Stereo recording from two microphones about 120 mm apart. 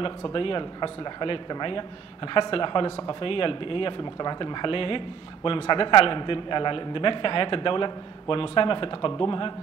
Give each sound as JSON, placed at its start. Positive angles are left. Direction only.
{"t": 0.0, "sound": "speech", "side_deg": 45}